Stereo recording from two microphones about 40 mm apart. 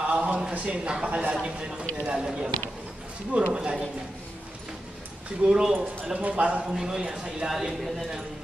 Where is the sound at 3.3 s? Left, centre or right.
Right.